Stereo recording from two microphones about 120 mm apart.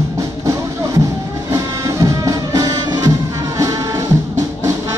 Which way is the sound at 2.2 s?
30° right (ahead or behind).